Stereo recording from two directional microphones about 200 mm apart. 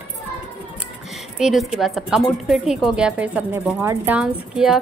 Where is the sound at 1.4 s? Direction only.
Centre (ahead or behind).